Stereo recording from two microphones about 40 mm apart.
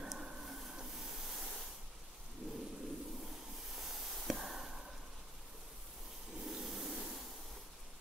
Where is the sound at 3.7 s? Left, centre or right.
Centre.